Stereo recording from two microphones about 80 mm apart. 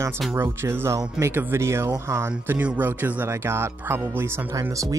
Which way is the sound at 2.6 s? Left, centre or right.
Right.